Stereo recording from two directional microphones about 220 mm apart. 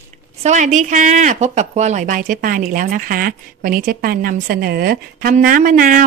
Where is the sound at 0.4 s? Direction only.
30° right (ahead or behind).